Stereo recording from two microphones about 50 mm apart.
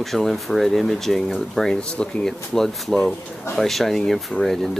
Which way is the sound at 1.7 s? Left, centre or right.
Centre.